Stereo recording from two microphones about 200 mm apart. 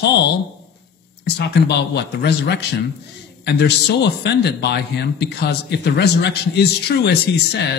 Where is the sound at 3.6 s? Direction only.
55° left (ahead or behind).